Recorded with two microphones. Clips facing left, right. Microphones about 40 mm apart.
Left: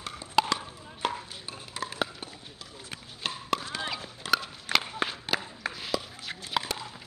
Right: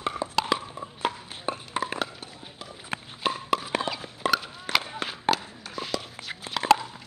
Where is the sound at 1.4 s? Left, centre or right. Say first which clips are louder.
Right 10 dB; right.